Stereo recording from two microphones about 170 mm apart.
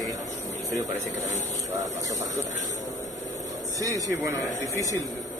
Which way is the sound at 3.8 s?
20° right (ahead or behind).